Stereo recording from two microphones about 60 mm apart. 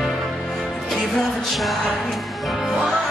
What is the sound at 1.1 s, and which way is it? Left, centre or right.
Music, centre.